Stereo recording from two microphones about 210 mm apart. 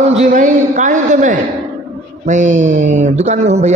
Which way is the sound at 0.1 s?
35° right (ahead or behind).